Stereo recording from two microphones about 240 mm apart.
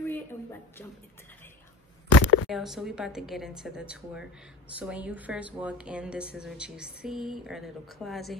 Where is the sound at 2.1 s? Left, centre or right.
Left.